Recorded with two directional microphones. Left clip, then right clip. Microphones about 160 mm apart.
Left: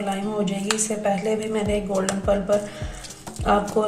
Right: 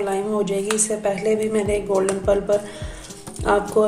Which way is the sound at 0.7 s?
40° right (ahead or behind).